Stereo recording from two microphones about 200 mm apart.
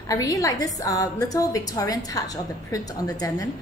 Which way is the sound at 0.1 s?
15° left (ahead or behind).